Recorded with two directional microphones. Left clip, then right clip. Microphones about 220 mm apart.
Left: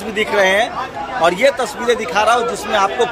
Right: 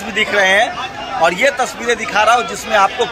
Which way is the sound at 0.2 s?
5° left (ahead or behind).